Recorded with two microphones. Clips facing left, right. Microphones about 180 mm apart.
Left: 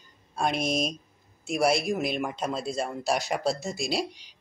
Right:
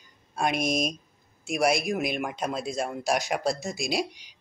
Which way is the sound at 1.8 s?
10° right (ahead or behind).